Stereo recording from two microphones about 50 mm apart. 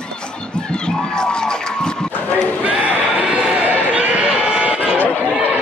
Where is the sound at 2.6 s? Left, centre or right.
Right.